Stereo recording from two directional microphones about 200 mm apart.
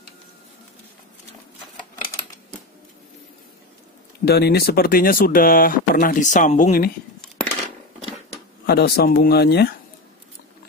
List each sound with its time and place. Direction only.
4.3 s speech: 55° left (ahead or behind)
8.6 s speech: 50° left (ahead or behind)